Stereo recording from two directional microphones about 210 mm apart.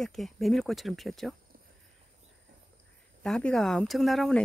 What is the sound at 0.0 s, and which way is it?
Speech, centre (ahead or behind).